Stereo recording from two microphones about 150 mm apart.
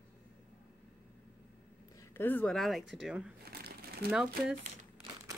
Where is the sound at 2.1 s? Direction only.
10° left (ahead or behind); by 3.3 s 5° right (ahead or behind).